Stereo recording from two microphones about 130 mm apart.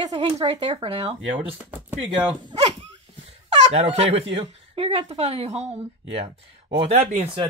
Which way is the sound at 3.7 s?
55° right (ahead or behind).